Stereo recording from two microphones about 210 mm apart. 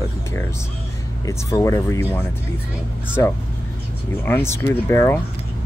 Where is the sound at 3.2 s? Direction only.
15° left (ahead or behind).